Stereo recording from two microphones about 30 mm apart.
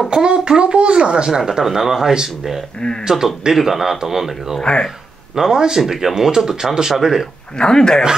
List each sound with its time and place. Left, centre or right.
0.1 s a child's voice: right
1.3 s speech: centre
4.8 s a sound: centre
5.5 s speech: right
5.8 s speech: centre
7.5 s speech: left